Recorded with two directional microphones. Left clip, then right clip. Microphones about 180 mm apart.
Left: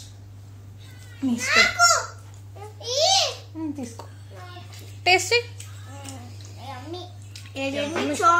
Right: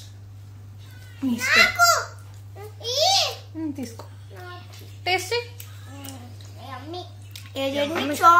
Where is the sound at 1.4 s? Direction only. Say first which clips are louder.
Right 1 dB; 20° right (ahead or behind).